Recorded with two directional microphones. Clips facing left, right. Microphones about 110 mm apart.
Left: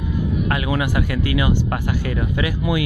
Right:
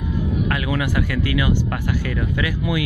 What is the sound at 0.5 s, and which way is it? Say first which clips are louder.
Speech: left 1 dB; 15° left (ahead or behind).